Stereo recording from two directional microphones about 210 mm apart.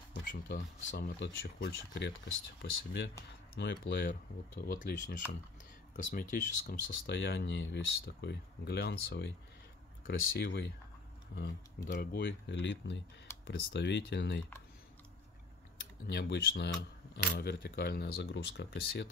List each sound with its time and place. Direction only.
0.2 s speech: 45° left (ahead or behind)
6.9 s speech: 55° left (ahead or behind)
16.1 s speech: 55° left (ahead or behind)